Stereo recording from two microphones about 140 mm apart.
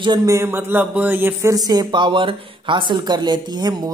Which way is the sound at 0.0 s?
25° right (ahead or behind).